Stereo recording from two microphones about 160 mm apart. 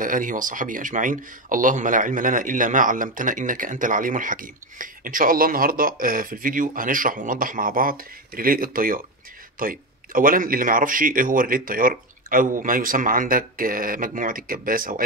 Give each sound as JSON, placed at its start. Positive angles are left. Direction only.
{"t": 0.0, "sound": "speech", "side_deg": -55}